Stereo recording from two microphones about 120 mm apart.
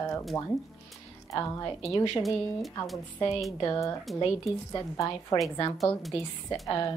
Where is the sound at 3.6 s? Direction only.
30° left (ahead or behind).